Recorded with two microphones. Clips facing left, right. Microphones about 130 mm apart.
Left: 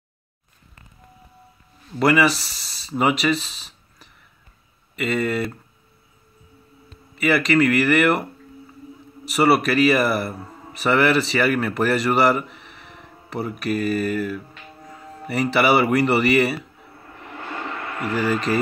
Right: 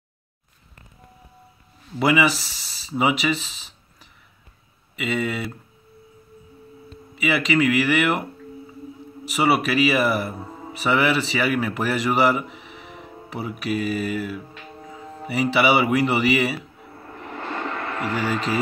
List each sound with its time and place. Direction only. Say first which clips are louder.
2.0 s speech: left 2 dB; centre (ahead or behind)
7.2 s speech: left 3 dB; centre (ahead or behind)
10.4 s music: right 3 dB; 20° right (ahead or behind)
10.7 s speech: left 2 dB; centre (ahead or behind)
17.2 s vehicle: right 2 dB; 35° right (ahead or behind)
18.0 s speech: left 3 dB; centre (ahead or behind)